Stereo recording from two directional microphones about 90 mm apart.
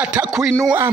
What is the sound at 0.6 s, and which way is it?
Speech, 50° right (ahead or behind).